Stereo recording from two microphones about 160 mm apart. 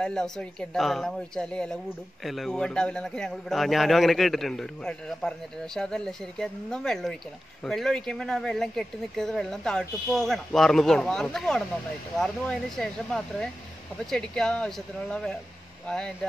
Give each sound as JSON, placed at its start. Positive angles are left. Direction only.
{"t": 0.0, "sound": "speech", "side_deg": 5}